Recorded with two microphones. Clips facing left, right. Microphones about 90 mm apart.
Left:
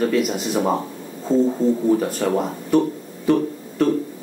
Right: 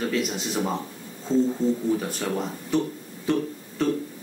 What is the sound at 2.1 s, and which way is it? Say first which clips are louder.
Speech: left 7 dB; 50° left (ahead or behind).